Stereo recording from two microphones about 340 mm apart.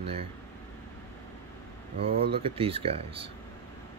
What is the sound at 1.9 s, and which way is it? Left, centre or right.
Speech, centre.